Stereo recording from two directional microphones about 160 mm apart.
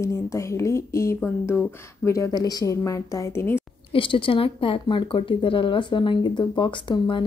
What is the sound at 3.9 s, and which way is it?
Speech, 35° left (ahead or behind).